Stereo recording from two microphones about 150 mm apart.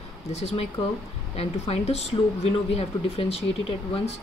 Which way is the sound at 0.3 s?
45° left (ahead or behind).